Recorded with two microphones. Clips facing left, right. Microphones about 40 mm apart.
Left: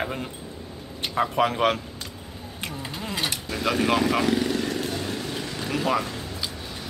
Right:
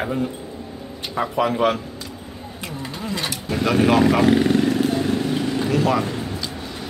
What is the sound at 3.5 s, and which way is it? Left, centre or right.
Speech, centre.